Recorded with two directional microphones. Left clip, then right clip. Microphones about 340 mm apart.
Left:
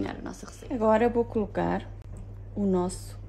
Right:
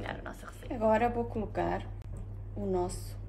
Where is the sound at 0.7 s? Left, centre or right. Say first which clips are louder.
Left 4 dB; left.